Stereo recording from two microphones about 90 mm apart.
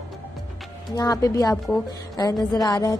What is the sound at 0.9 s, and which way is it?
A woman's voice, 45° left (ahead or behind).